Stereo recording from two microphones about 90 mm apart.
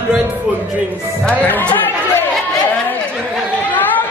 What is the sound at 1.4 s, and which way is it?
Speech, 15° left (ahead or behind).